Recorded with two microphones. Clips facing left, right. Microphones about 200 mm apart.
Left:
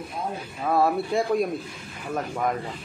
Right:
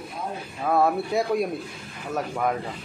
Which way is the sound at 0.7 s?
Centre (ahead or behind).